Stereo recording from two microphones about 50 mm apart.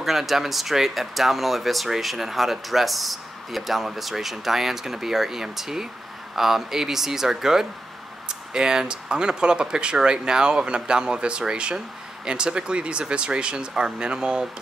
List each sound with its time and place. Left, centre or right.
0.0 s speech: centre